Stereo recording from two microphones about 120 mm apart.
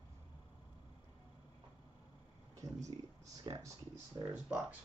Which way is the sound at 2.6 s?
30° right (ahead or behind).